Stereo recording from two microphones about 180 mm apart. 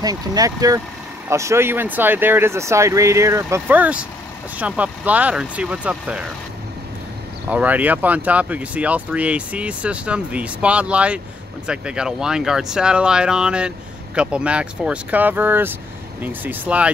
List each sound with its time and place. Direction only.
0.0 s speech: 20° right (ahead or behind)
7.4 s speech: 10° right (ahead or behind)